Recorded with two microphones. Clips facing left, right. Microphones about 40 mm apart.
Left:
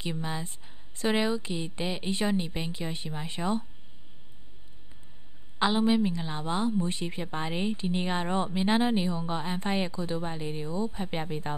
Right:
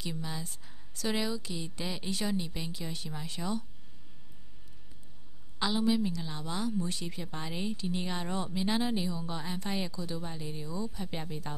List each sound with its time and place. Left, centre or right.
0.0 s a woman's voice: left
5.6 s a woman's voice: left